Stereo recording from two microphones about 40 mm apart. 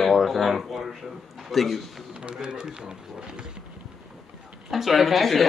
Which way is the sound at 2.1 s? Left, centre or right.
Right.